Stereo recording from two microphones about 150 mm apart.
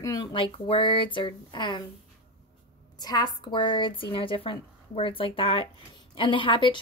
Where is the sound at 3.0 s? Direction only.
25° left (ahead or behind).